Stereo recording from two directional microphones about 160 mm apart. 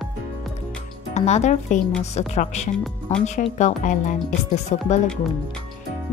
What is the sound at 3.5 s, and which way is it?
Speech, 50° left (ahead or behind).